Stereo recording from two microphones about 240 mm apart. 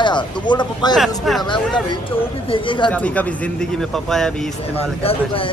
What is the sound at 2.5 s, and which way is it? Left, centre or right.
Speech, left.